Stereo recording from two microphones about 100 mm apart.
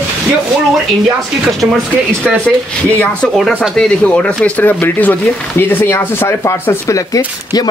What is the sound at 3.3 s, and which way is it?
Speech, centre (ahead or behind).